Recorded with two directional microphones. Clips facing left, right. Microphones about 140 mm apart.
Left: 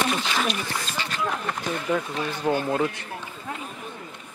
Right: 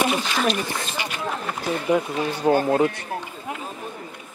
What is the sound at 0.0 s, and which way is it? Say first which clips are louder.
Speech: right 3 dB; 5° right (ahead or behind).